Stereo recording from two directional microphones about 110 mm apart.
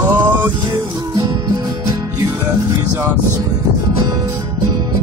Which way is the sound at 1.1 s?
35° right (ahead or behind).